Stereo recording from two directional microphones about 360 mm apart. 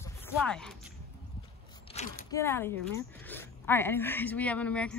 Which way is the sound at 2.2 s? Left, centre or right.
Centre.